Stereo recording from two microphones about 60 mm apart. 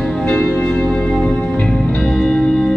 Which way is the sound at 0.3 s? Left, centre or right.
Centre.